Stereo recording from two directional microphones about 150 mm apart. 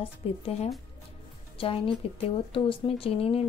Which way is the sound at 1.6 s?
40° left (ahead or behind).